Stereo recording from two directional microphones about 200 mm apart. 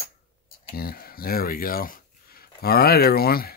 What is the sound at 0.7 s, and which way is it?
Speech, 50° left (ahead or behind).